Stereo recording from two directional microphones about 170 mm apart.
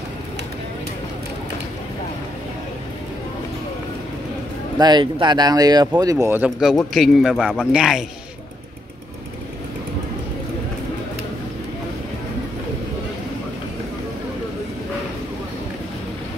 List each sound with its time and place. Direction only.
4.7 s a man's voice: 25° right (ahead or behind); by 8.0 s centre (ahead or behind)